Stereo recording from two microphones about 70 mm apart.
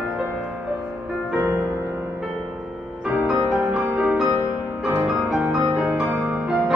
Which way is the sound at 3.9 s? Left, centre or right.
Centre.